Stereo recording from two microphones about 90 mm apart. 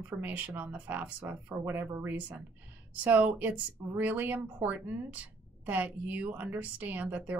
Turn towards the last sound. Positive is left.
turn(degrees=-20)  # may be behind; listen again after turning